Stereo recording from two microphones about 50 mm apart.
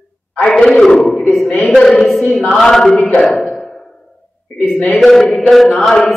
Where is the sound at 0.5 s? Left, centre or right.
Centre.